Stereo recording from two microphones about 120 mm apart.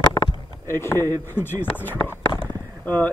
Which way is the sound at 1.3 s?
20° left (ahead or behind).